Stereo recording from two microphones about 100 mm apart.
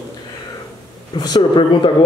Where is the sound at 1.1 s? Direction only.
45° left (ahead or behind).